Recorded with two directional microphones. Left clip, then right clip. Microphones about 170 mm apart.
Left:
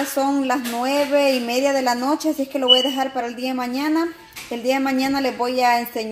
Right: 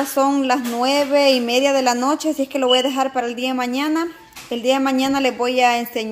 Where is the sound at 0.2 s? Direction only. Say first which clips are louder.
Right 4 dB; 10° right (ahead or behind).